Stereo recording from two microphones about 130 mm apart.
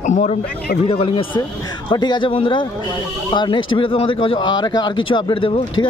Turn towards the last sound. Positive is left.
turn(degrees=40)  # may be behind; listen again after turning